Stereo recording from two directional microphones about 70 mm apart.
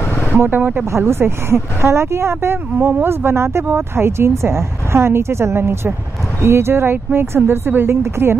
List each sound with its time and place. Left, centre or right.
0.0 s a sound: left
0.3 s speech: right
0.8 s speech: right